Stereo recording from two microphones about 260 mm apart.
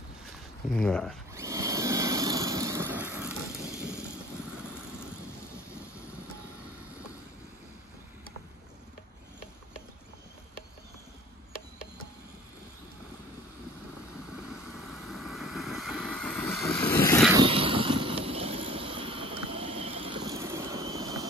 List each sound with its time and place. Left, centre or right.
0.7 s speech: centre
1.3 s a sound: centre
3.5 s vehicle: right
14.3 s vehicle: centre
17.3 s vehicle: centre